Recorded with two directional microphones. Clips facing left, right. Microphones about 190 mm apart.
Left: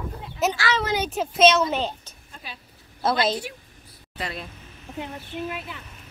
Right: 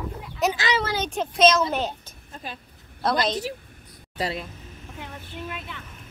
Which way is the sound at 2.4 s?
45° right (ahead or behind).